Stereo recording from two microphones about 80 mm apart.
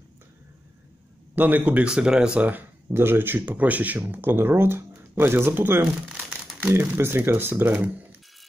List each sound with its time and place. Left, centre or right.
1.3 s speech: right
2.9 s speech: right